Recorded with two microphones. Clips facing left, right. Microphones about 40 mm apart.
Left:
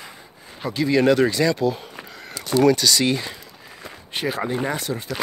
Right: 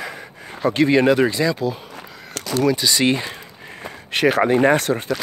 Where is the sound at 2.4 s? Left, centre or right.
Right.